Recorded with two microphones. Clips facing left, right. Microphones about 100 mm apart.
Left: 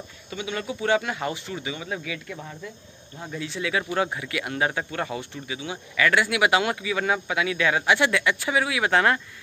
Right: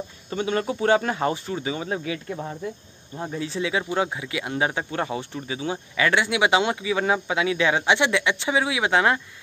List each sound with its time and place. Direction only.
0.3 s speech: 40° right (ahead or behind)
5.9 s speech: 25° right (ahead or behind)